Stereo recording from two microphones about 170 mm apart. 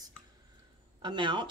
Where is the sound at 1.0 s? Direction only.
25° right (ahead or behind).